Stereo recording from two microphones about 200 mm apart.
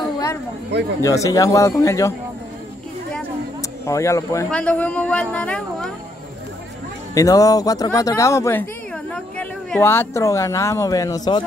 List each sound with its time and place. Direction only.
1.0 s speech: 15° left (ahead or behind)
3.8 s a woman's voice: 15° left (ahead or behind)
7.2 s speech: 15° left (ahead or behind)